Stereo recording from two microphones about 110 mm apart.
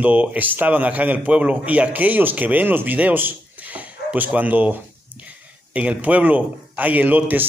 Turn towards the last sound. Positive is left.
turn(degrees=-15)  # may be behind; listen again after turning